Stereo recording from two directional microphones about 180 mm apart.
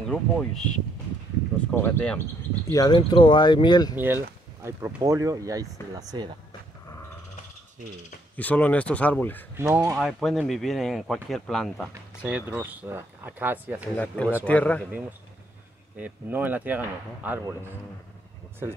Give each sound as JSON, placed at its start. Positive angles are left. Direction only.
{"t": 0.0, "sound": "speech", "side_deg": 5}
{"t": 2.7, "sound": "speech", "side_deg": 25}
{"t": 3.9, "sound": "speech", "side_deg": -10}
{"t": 8.4, "sound": "speech", "side_deg": 10}
{"t": 9.6, "sound": "speech", "side_deg": -15}
{"t": 9.9, "sound": "speech", "side_deg": 0}
{"t": 13.9, "sound": "speech", "side_deg": 5}
{"t": 14.9, "sound": "speech", "side_deg": -10}